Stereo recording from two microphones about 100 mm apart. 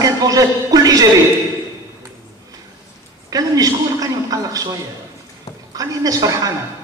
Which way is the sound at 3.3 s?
35° right (ahead or behind).